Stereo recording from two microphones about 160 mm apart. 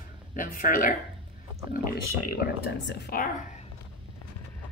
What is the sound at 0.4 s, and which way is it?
Speech, 60° left (ahead or behind).